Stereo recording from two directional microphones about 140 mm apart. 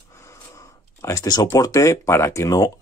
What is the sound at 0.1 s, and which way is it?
Speech, 20° left (ahead or behind).